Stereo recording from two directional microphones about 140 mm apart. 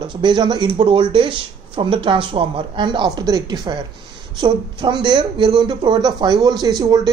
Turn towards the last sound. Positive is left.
turn(degrees=-30)  # may be behind; listen again after turning